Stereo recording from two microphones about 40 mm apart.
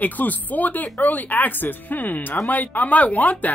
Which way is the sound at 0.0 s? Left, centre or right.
Left.